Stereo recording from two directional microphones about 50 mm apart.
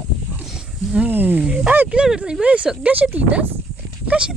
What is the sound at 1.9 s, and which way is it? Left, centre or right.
Speech, centre.